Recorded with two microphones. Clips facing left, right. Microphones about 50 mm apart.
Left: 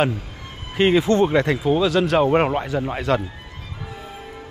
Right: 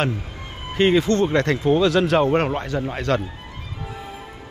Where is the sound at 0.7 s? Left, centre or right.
Centre.